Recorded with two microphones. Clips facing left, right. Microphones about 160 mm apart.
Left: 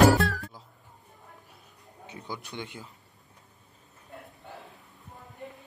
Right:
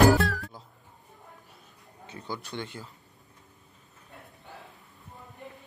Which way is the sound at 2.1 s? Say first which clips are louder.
Right 2 dB; 15° left (ahead or behind).